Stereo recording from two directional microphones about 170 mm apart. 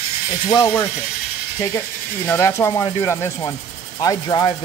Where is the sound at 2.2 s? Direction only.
15° left (ahead or behind).